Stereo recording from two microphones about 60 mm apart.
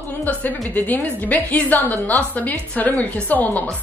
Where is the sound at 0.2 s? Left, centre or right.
Left.